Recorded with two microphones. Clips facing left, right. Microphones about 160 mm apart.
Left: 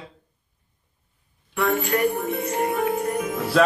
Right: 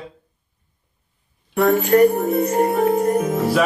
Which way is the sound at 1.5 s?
40° right (ahead or behind).